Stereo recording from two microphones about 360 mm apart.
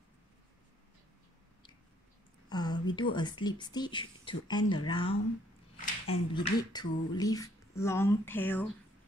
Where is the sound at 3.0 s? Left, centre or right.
Centre.